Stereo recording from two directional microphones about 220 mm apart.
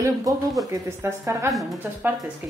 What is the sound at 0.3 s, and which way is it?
A woman's voice, 15° right (ahead or behind).